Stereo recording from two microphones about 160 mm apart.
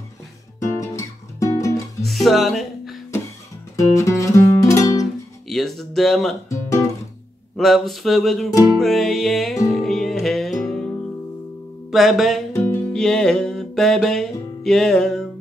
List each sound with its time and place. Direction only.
0.6 s music: 20° left (ahead or behind)
2.0 s music: centre (ahead or behind)
3.7 s music: 20° left (ahead or behind)
5.5 s a sound: centre (ahead or behind)
6.5 s guitar: 20° left (ahead or behind)
7.5 s a sound: centre (ahead or behind)
9.7 s music: centre (ahead or behind)
11.9 s a sound: centre (ahead or behind)
12.6 s music: 5° left (ahead or behind)